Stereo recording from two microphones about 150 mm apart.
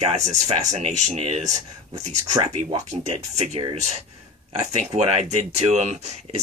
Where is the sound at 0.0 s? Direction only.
45° right (ahead or behind).